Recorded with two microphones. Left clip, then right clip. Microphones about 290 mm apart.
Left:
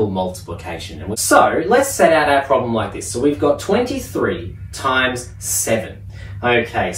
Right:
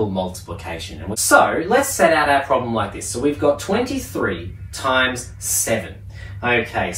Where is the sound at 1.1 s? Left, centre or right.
Centre.